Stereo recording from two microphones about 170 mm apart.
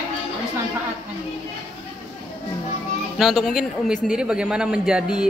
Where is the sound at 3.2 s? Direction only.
Centre (ahead or behind).